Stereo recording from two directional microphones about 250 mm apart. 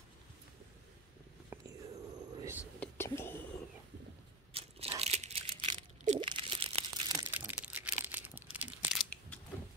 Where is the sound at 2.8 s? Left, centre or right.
Centre.